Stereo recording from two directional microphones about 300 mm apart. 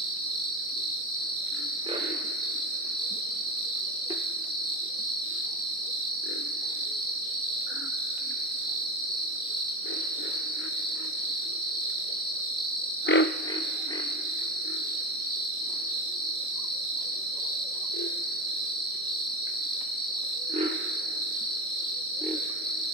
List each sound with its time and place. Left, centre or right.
13.1 s frog: left